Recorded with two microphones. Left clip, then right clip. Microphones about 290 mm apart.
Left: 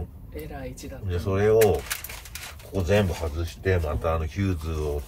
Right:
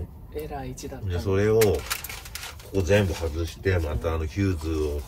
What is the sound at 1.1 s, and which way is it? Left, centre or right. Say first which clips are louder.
Speech: left 1 dB; centre.